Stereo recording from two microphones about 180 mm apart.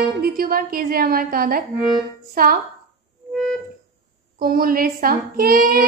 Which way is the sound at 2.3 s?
55° right (ahead or behind).